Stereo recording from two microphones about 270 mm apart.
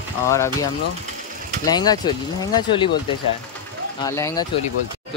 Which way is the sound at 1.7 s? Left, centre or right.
Centre.